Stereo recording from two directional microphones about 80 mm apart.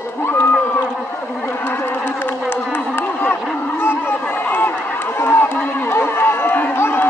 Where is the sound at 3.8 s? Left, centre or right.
Left.